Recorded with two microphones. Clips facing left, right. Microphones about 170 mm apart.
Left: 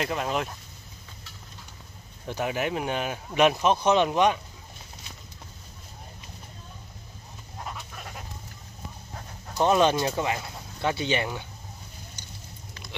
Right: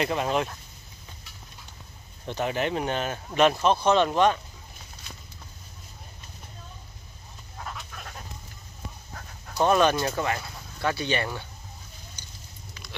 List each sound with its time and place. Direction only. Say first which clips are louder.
0.0 s speech: right 2 dB; centre (ahead or behind)
2.2 s speech: right 1 dB; 10° left (ahead or behind)
7.5 s frog: left 1 dB; 10° left (ahead or behind)
9.1 s speech: left 3 dB; 20° left (ahead or behind)